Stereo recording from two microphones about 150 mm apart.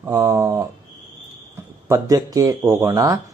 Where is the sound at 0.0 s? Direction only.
20° right (ahead or behind).